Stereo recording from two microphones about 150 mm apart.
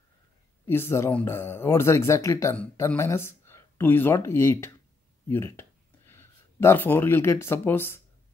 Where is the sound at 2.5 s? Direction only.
10° left (ahead or behind).